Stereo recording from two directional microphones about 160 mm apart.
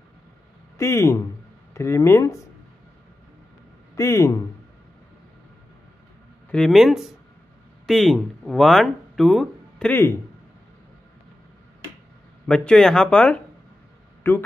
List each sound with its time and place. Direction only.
0.7 s speech: 15° left (ahead or behind)
3.9 s speech: 20° left (ahead or behind)
6.5 s speech: centre (ahead or behind)
9.8 s speech: 15° left (ahead or behind)
12.4 s speech: 5° left (ahead or behind)